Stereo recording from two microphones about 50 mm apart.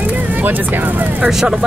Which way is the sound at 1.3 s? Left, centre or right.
Centre.